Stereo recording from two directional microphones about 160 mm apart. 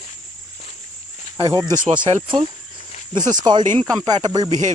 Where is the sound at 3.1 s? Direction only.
25° right (ahead or behind).